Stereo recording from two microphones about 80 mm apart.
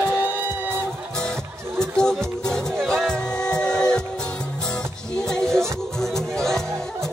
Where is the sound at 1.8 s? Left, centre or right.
Centre.